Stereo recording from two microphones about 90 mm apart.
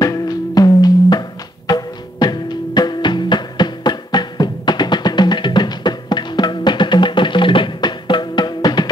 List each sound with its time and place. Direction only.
0.0 s music: 45° left (ahead or behind)